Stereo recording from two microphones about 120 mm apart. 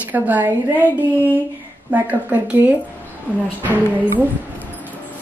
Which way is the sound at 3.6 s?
15° right (ahead or behind).